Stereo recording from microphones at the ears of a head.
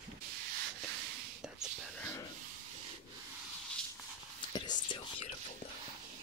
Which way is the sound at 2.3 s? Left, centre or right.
Right.